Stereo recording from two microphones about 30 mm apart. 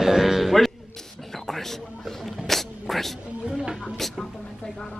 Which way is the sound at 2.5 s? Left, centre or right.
Centre.